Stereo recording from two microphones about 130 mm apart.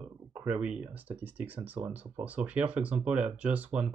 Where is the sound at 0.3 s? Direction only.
10° right (ahead or behind).